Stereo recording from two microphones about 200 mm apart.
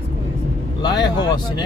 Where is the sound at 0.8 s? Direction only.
20° left (ahead or behind).